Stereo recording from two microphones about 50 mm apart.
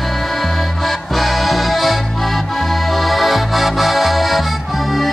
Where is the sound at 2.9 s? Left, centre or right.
Centre.